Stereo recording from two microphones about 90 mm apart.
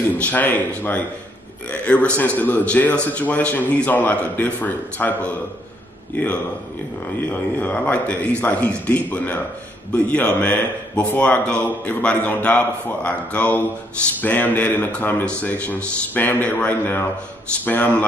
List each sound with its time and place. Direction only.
0.2 s a man's voice: 20° left (ahead or behind)